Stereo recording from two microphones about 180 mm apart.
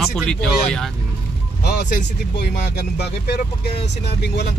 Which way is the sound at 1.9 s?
65° left (ahead or behind).